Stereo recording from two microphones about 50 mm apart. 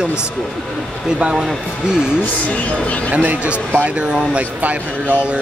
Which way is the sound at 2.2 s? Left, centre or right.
Left.